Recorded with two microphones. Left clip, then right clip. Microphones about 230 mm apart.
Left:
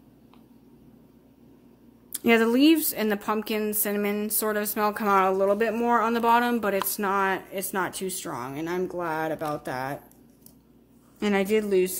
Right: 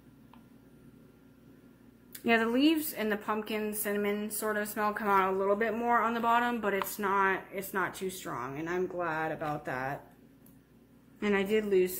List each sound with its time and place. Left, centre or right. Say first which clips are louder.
2.2 s a woman's voice: left 7 dB; left
11.1 s speech: left 5 dB; left